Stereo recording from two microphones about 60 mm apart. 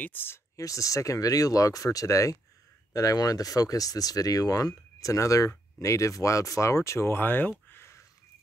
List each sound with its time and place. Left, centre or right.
0.0 s speech: left
0.6 s speech: left
2.9 s speech: left